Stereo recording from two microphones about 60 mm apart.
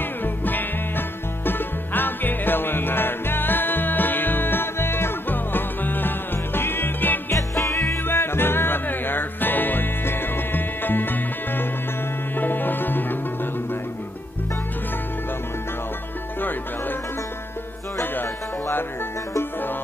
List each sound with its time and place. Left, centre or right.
0.2 s music: left
7.3 s music: left
7.9 s music: left
18.1 s music: left